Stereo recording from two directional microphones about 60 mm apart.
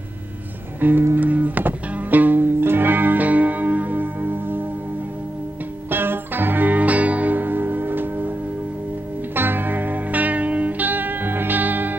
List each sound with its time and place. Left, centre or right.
0.7 s music: right
5.9 s music: right
9.3 s music: right